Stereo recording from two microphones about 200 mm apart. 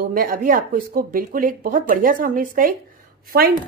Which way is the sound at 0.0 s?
45° right (ahead or behind).